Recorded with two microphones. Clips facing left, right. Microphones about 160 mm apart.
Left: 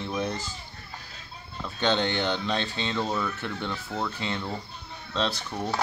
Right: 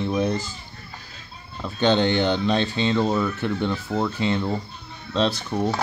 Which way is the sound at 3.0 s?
20° right (ahead or behind).